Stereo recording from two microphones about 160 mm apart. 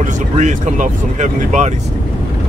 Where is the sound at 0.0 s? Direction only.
50° right (ahead or behind).